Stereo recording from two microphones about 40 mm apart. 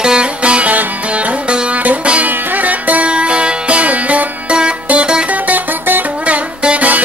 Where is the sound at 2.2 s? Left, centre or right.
Right.